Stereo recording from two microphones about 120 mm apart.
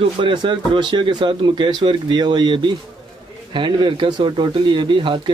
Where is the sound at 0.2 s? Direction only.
40° right (ahead or behind).